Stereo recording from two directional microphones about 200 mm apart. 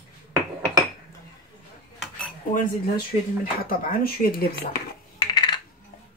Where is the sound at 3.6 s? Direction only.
45° left (ahead or behind).